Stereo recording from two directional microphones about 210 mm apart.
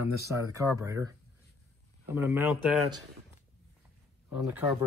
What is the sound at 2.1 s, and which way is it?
Speech, 10° right (ahead or behind).